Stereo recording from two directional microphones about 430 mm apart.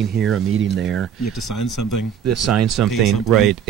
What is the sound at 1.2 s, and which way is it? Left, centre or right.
Speech, left.